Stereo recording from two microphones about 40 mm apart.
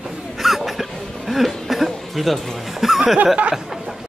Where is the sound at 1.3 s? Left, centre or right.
Centre.